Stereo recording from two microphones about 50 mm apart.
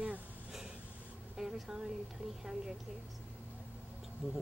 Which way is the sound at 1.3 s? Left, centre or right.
Centre.